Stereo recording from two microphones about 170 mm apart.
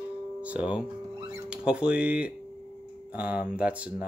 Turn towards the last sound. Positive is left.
turn(degrees=-5)  # may be behind; listen again after turning